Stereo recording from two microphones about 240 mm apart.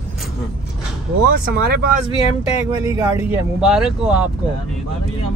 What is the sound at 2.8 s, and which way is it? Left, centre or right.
Speech, centre.